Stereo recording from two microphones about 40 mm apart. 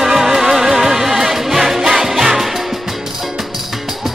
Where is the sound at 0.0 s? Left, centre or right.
Centre.